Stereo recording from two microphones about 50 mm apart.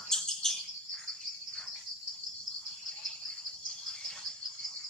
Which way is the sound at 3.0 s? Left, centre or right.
Centre.